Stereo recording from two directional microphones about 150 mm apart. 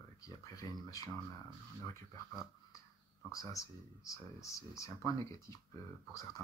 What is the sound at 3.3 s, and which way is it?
Speech, 20° left (ahead or behind).